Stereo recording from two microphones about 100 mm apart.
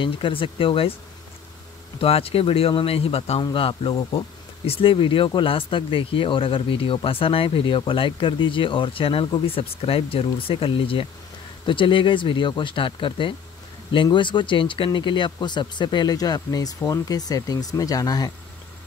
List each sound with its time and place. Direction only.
0.0 s speech: 60° left (ahead or behind)
2.0 s speech: 75° left (ahead or behind)
3.5 s speech: 65° left (ahead or behind); by 18.3 s 40° left (ahead or behind)